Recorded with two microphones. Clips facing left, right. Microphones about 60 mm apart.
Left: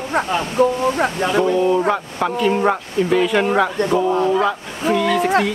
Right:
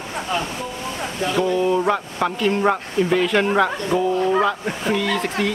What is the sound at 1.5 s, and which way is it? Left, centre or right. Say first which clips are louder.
Speech: left 2 dB; centre.